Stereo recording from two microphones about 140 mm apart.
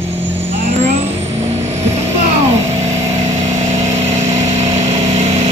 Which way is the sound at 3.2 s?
60° right (ahead or behind).